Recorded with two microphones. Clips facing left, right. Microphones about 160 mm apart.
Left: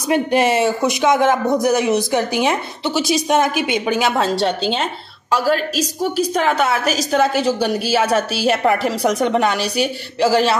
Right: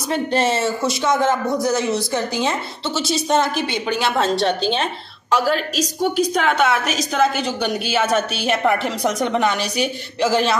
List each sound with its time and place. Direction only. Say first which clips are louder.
0.1 s speech: left 4 dB; 15° left (ahead or behind)
6.4 s a woman's voice: left 1 dB; 5° left (ahead or behind)